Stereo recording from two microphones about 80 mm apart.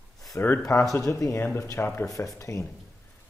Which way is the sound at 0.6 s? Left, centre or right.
Left.